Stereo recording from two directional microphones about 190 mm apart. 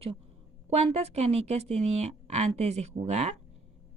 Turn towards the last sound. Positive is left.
turn(degrees=-35)  # may be behind; listen again after turning